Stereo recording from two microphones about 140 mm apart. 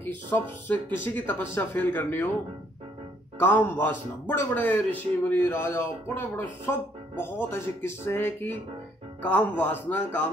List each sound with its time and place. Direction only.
0.0 s speech: 15° left (ahead or behind)
3.3 s speech: 15° left (ahead or behind)